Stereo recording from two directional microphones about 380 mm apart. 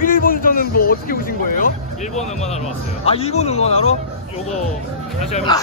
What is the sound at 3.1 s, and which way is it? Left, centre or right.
Speech, centre.